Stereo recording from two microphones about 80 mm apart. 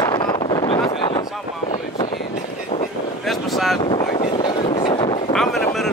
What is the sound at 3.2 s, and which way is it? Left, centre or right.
Vehicle, centre.